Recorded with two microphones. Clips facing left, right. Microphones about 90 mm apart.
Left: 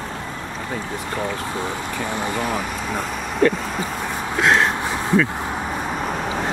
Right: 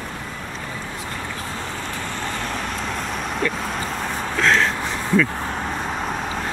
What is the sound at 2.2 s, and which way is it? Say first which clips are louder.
Vehicle: left 5 dB; 10° left (ahead or behind).